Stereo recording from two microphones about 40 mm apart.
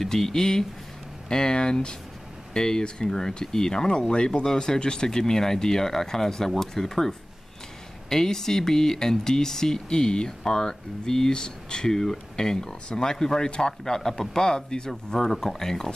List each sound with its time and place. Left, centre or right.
0.0 s speech: centre